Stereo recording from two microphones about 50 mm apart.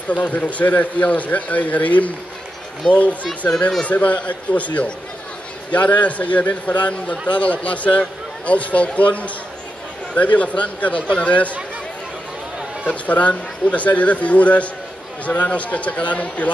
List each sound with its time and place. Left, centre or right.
0.1 s speech: left
3.3 s speech: centre
3.8 s a man's voice: left
12.8 s a man's voice: left